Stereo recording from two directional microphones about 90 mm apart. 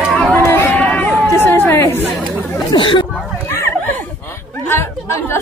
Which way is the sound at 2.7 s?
65° left (ahead or behind).